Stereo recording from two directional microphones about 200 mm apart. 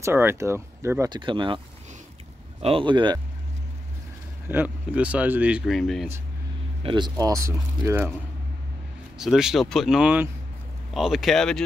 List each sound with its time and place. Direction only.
0.0 s speech: 10° right (ahead or behind)
2.6 s speech: 25° right (ahead or behind)
4.5 s speech: 10° right (ahead or behind)
6.8 s speech: 25° right (ahead or behind)
9.2 s speech: centre (ahead or behind)